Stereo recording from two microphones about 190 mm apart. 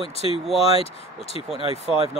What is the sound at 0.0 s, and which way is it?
Speech, 30° left (ahead or behind).